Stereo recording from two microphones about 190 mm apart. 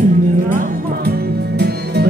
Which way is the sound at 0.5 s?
45° right (ahead or behind).